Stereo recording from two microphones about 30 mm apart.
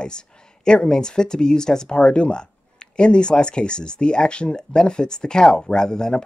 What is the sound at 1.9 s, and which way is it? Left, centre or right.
Speech, left.